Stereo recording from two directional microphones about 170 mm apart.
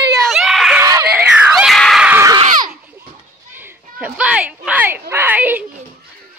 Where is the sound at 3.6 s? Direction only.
5° right (ahead or behind).